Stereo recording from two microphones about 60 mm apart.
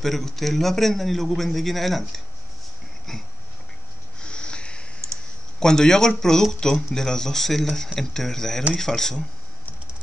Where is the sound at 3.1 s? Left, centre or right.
Centre.